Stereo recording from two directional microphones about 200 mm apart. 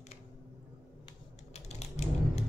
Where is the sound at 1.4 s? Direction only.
35° left (ahead or behind).